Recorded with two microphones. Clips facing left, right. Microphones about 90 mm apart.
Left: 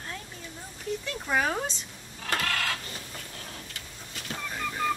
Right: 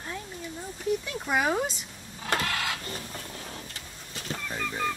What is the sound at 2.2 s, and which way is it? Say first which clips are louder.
Printer: right 1 dB; 10° right (ahead or behind).